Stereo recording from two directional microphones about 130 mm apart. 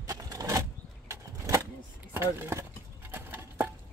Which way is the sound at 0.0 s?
25° right (ahead or behind).